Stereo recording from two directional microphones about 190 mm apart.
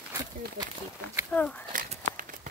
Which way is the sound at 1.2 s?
5° left (ahead or behind).